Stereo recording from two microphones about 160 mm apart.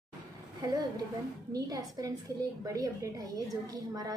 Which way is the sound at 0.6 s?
25° right (ahead or behind).